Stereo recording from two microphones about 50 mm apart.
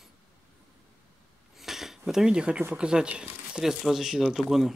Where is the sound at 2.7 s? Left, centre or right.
Centre.